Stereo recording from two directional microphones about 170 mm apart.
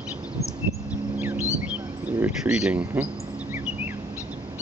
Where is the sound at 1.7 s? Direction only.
10° right (ahead or behind).